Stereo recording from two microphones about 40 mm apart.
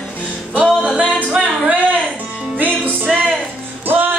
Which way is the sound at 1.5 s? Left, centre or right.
Right.